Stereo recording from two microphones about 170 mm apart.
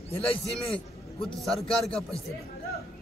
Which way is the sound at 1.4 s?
Centre (ahead or behind).